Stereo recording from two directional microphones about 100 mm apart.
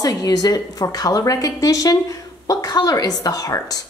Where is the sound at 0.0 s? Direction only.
40° left (ahead or behind).